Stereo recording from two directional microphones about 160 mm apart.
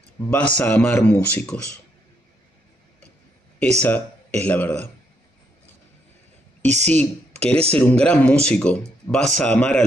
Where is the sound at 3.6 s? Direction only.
5° left (ahead or behind).